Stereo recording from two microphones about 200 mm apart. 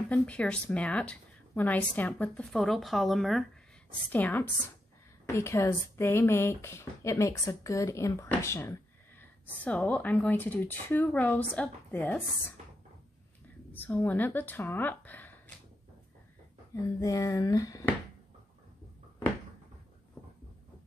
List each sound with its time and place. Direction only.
0.1 s a woman's voice: 5° left (ahead or behind)
13.7 s speech: 10° left (ahead or behind)
17.0 s speech: 15° left (ahead or behind)